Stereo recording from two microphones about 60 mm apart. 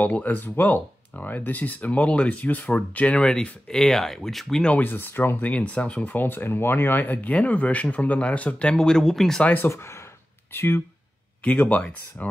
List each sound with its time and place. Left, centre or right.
0.0 s speech: left; by 4.7 s centre
4.7 s speech: left
5.5 s speech: left
6.1 s speech: left; by 9.4 s centre
9.7 s speech: left
11.4 s speech: left